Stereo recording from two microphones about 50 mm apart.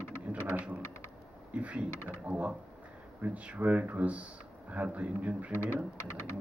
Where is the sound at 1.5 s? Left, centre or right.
Right.